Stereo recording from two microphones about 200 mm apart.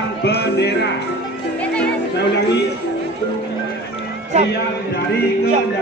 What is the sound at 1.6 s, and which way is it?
Music, 5° left (ahead or behind).